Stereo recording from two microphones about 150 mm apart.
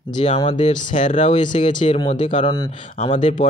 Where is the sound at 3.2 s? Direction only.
55° left (ahead or behind).